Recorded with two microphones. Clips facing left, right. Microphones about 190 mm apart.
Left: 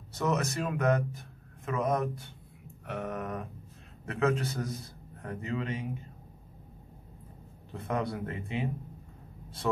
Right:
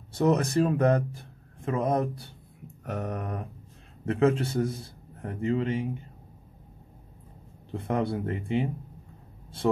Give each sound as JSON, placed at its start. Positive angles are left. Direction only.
{"t": 0.1, "sound": "speech", "side_deg": -30}
{"t": 2.8, "sound": "mantra", "side_deg": -40}
{"t": 4.0, "sound": "a man's voice", "side_deg": -30}
{"t": 7.7, "sound": "speech", "side_deg": -30}